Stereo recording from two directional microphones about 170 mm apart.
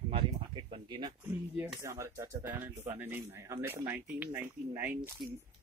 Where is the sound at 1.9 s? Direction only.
15° right (ahead or behind).